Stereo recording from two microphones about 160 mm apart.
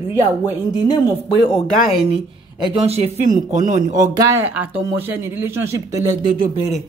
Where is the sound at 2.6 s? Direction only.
35° right (ahead or behind); by 3.8 s 50° right (ahead or behind).